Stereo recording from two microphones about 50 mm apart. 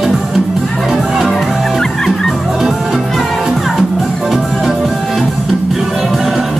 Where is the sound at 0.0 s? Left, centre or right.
Centre.